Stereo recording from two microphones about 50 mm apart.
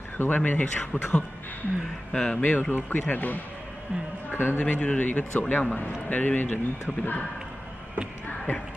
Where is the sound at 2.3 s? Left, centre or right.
Left.